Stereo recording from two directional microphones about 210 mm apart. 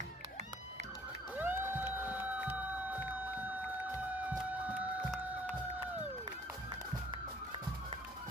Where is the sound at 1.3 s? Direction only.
10° right (ahead or behind).